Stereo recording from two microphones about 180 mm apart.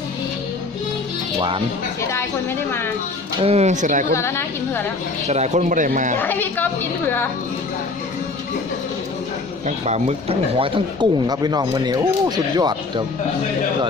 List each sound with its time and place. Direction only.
3.4 s a man's voice: 40° right (ahead or behind)
4.1 s a woman's voice: 15° left (ahead or behind)
5.3 s a man's voice: 40° right (ahead or behind)
6.2 s a woman's voice: 10° left (ahead or behind)
9.7 s speech: 40° right (ahead or behind)